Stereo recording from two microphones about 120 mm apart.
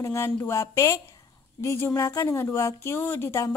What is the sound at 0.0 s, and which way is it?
Speech, 25° left (ahead or behind).